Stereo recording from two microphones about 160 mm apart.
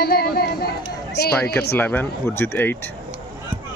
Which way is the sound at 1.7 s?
10° left (ahead or behind).